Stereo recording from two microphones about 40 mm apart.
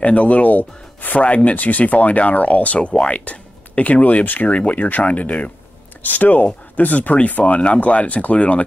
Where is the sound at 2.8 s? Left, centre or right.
Left.